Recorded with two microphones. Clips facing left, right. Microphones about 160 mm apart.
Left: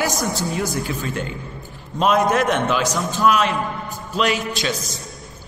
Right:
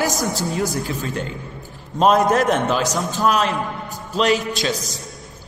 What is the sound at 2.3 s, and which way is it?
A man's voice, 40° right (ahead or behind).